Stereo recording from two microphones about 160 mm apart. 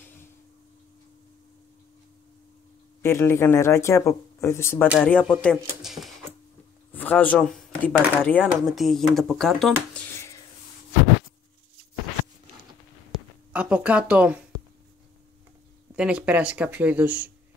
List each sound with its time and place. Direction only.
3.0 s speech: 15° left (ahead or behind); by 6.1 s centre (ahead or behind)
6.9 s speech: 10° left (ahead or behind)
13.5 s speech: 10° right (ahead or behind)
16.0 s speech: 5° right (ahead or behind)